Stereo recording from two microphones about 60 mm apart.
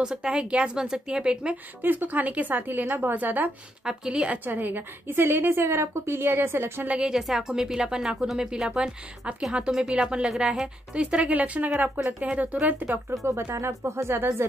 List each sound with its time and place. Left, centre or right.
0.0 s a woman's voice: centre
1.8 s speech: right
3.8 s a woman's voice: centre
4.5 s a woman's voice: right
6.9 s a woman's voice: centre; by 13.0 s right
13.2 s speech: right